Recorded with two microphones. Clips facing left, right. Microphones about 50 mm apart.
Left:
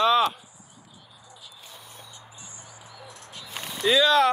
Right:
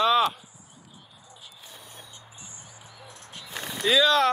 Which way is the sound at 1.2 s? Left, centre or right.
Right.